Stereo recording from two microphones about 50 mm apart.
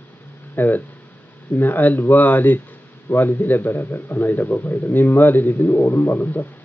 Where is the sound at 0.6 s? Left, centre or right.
Left.